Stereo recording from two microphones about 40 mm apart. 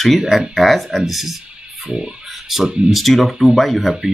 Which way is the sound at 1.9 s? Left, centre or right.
Right.